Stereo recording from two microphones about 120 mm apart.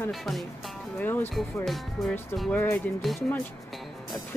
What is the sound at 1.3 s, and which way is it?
Speech, centre (ahead or behind).